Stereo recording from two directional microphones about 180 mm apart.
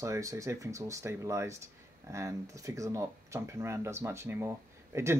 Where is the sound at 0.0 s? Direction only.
15° right (ahead or behind).